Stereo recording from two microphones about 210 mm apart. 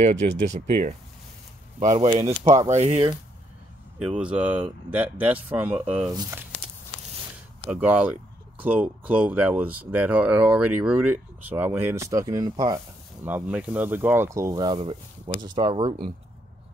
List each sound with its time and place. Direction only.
0.0 s speech: 35° right (ahead or behind)
4.0 s speech: 5° right (ahead or behind)
7.7 s speech: 5° right (ahead or behind); by 16.1 s 25° right (ahead or behind)